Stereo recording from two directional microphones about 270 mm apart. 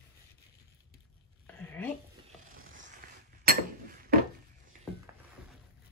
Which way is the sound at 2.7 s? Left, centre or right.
Right.